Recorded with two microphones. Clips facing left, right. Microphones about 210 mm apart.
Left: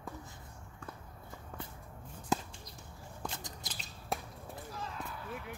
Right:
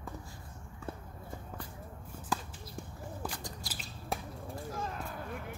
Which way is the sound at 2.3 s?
20° left (ahead or behind).